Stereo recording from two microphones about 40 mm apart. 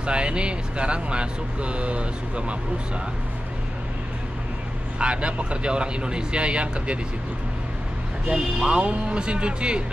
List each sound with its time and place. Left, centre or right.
0.0 s speech: right
4.9 s speech: right
8.3 s speech: right